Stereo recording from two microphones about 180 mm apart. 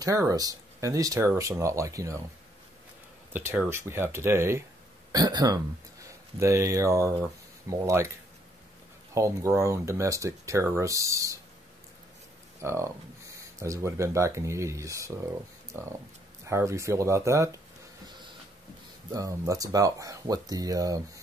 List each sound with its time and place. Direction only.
0.0 s speech: 20° right (ahead or behind)
3.3 s speech: 10° right (ahead or behind)
9.1 s speech: 15° right (ahead or behind)
12.6 s speech: 15° right (ahead or behind)
19.0 s speech: 20° right (ahead or behind)